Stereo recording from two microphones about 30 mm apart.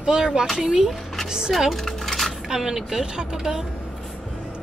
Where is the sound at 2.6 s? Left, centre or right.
Centre.